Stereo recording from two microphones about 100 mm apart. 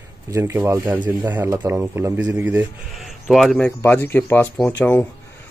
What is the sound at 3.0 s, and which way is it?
Speech, centre (ahead or behind).